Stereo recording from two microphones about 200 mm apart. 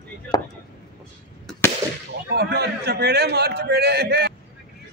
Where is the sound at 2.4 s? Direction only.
55° right (ahead or behind).